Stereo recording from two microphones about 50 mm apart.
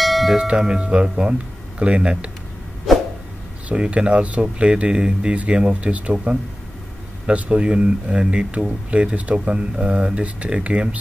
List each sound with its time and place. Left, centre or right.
0.0 s bell: centre
0.4 s speech: centre
2.9 s a sound: centre
3.6 s speech: right
7.2 s speech: right